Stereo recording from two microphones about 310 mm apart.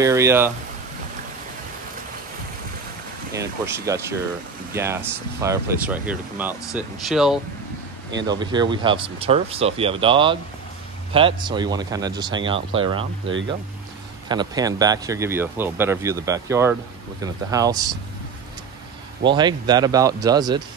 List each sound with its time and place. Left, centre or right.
0.0 s speech: centre
3.3 s speech: centre
8.1 s speech: centre
14.3 s speech: centre
19.2 s speech: centre